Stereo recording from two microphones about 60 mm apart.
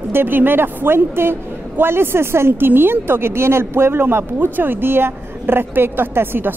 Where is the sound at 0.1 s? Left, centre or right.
Right.